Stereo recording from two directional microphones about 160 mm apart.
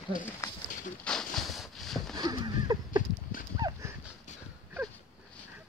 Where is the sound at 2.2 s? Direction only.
25° right (ahead or behind).